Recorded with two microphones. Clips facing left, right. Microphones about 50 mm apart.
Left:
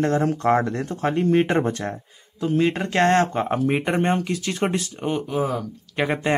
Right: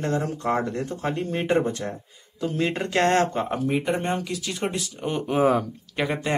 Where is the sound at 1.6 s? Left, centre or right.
Left.